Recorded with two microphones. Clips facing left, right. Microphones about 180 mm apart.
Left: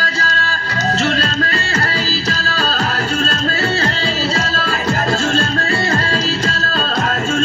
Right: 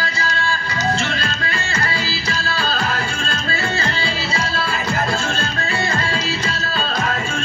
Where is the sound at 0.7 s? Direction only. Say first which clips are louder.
Left 6 dB; 40° left (ahead or behind).